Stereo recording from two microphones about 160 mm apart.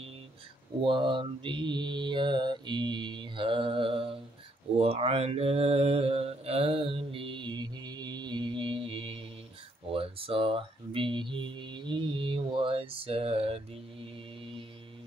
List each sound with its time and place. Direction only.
0.8 s mantra: 30° right (ahead or behind)
9.9 s speech: 35° right (ahead or behind)